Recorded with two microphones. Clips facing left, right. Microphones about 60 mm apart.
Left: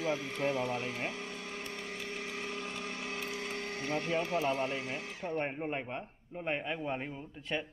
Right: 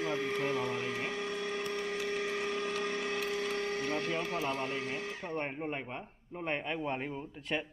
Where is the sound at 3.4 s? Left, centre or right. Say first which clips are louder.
Right 5 dB; right.